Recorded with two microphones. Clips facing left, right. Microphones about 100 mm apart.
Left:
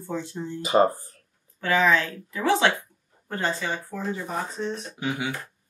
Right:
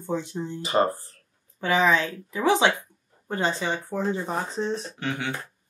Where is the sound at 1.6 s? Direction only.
20° right (ahead or behind).